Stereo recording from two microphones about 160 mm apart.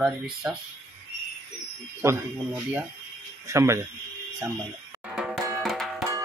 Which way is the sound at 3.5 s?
20° right (ahead or behind).